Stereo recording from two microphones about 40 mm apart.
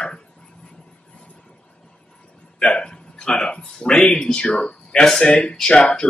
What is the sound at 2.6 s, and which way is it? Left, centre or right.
Speech, left.